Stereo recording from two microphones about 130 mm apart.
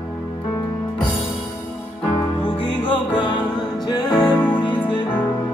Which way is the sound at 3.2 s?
35° left (ahead or behind).